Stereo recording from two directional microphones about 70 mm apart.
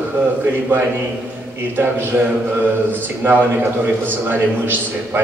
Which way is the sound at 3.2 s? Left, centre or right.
Right.